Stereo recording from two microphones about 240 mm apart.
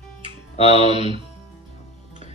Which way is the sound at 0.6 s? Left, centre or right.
Left.